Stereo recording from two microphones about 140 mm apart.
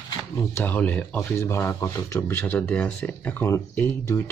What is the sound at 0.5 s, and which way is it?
Speech, 10° left (ahead or behind).